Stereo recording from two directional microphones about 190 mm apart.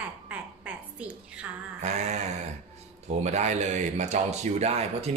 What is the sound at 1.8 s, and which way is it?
Speech, 35° right (ahead or behind).